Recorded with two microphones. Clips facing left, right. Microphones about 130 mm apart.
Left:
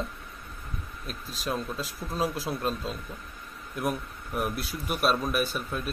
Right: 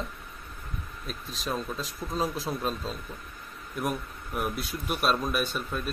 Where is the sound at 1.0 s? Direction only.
Centre (ahead or behind).